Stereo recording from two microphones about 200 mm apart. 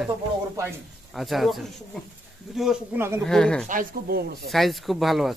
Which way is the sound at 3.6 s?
45° right (ahead or behind).